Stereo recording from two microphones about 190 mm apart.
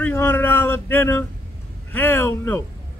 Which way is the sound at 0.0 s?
10° left (ahead or behind).